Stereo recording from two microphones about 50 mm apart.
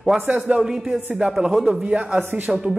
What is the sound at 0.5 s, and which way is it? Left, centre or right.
A man's voice, centre.